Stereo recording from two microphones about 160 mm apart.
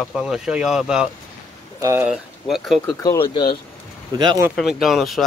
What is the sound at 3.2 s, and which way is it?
Speech, 30° left (ahead or behind).